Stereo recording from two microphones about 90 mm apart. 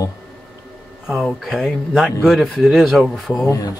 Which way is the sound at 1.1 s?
5° right (ahead or behind).